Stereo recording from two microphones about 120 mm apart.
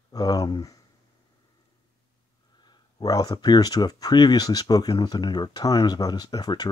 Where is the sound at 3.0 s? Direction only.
30° left (ahead or behind).